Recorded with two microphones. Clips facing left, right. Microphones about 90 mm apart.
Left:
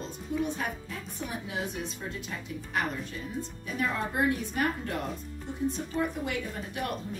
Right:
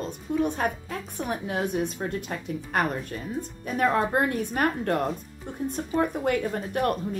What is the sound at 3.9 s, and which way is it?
Speech, 55° right (ahead or behind).